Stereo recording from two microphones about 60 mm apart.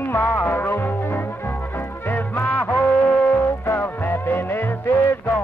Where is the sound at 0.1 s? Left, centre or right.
Left.